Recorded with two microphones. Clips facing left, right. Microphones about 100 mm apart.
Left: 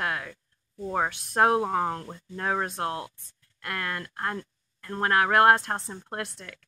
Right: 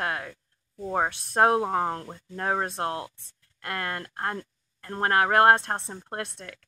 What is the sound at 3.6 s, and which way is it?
Speech, 25° right (ahead or behind).